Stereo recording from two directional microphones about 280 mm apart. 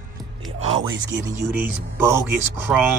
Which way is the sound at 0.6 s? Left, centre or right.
Right.